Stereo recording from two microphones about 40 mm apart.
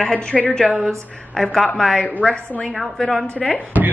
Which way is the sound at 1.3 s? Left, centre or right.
Centre.